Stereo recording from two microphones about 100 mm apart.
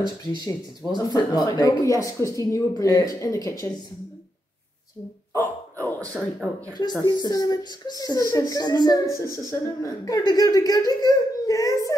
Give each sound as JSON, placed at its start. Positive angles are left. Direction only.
{"t": 0.5, "sound": "speech", "side_deg": 40}
{"t": 5.3, "sound": "dog", "side_deg": 25}
{"t": 6.7, "sound": "speech", "side_deg": 45}
{"t": 9.0, "sound": "speech", "side_deg": 30}